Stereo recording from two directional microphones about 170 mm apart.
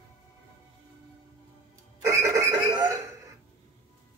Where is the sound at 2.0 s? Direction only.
20° right (ahead or behind).